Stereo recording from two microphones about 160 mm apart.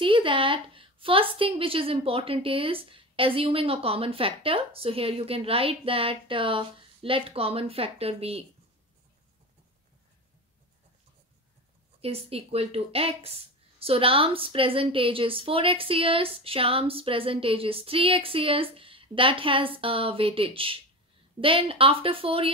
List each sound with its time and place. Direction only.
0.0 s speech: 30° right (ahead or behind)
12.0 s speech: 40° right (ahead or behind)